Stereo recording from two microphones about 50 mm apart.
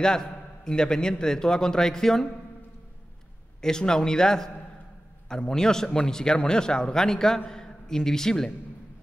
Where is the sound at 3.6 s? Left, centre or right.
Centre.